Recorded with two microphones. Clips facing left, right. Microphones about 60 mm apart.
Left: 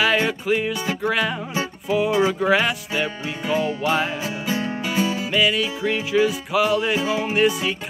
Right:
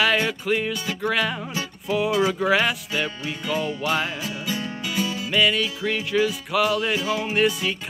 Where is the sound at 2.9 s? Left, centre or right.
Centre.